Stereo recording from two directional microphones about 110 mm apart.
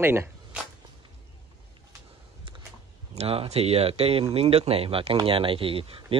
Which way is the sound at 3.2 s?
70° right (ahead or behind).